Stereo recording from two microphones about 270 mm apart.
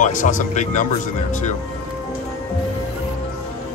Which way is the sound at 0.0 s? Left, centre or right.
Left.